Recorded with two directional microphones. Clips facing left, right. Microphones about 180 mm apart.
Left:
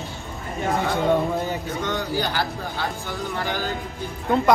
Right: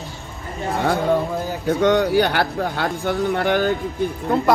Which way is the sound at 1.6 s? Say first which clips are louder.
Right 10 dB; 65° right (ahead or behind).